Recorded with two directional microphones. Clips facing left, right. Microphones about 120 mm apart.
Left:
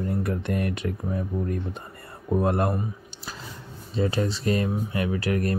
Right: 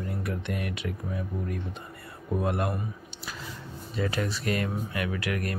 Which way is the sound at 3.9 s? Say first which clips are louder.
Left 5 dB; 30° left (ahead or behind).